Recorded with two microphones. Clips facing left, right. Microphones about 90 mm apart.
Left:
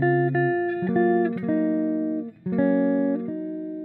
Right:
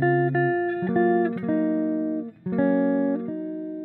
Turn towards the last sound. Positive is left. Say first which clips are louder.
# even
turn(degrees=-45)  # may be behind; listen again after turning